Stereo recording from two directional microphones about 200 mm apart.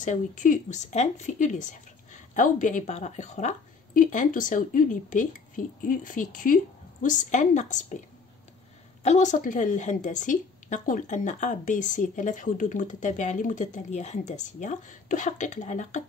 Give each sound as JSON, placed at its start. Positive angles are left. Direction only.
{"t": 0.0, "sound": "speech", "side_deg": 40}
{"t": 9.0, "sound": "speech", "side_deg": 35}